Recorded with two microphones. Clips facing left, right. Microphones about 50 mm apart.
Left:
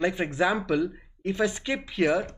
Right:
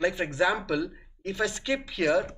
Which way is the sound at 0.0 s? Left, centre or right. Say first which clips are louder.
Even; centre.